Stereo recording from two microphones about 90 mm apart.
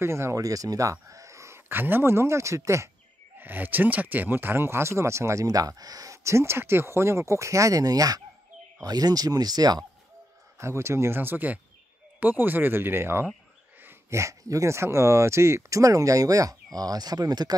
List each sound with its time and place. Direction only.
0.0 s speech: 30° right (ahead or behind)
3.3 s speech: 20° right (ahead or behind); by 9.8 s 45° right (ahead or behind)
10.6 s speech: 30° right (ahead or behind); by 17.6 s 45° right (ahead or behind)